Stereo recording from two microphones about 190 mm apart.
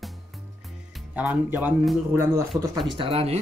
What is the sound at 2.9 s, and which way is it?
Speech, 30° right (ahead or behind).